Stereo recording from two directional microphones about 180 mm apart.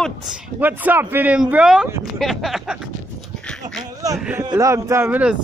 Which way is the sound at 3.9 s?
20° right (ahead or behind).